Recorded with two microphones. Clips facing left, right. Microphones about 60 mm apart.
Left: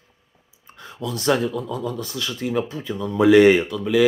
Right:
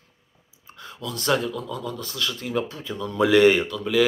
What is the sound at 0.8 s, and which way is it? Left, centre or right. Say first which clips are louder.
Speech: left 5 dB; left.